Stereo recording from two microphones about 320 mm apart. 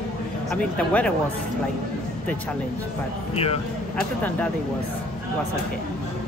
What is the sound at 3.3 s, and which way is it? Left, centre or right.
Speech, centre.